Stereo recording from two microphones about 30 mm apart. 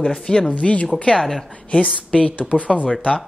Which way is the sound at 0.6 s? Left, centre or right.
Left.